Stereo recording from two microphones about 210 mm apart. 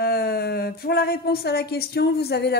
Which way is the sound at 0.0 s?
45° left (ahead or behind).